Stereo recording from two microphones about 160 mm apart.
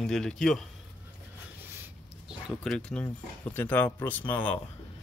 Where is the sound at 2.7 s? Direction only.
5° left (ahead or behind).